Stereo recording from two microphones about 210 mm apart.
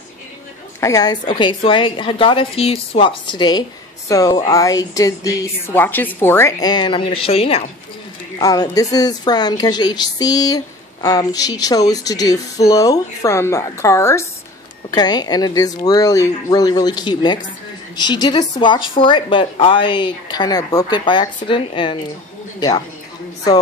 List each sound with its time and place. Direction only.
0.7 s a woman's voice: 15° left (ahead or behind)
8.4 s a woman's voice: 15° left (ahead or behind)